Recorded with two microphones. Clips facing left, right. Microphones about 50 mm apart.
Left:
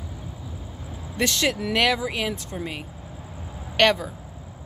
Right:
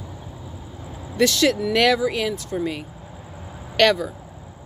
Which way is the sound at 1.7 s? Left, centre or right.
Centre.